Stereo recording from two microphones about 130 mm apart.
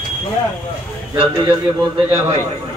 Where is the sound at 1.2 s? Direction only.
40° right (ahead or behind).